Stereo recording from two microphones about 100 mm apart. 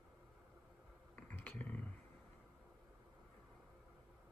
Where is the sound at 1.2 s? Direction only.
15° left (ahead or behind).